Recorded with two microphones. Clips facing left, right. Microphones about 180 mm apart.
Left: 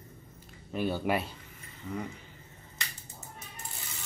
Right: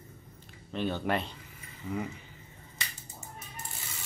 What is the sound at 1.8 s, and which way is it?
Speech, 5° right (ahead or behind).